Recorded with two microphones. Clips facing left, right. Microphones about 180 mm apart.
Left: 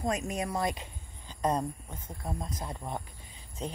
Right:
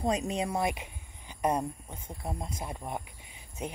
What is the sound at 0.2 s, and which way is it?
Speech, 25° right (ahead or behind).